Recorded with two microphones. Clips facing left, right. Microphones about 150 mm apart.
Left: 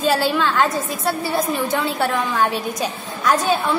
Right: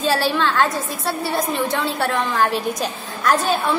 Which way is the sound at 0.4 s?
Centre (ahead or behind).